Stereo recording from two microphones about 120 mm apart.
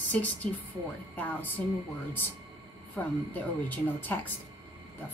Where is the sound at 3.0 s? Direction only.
15° left (ahead or behind).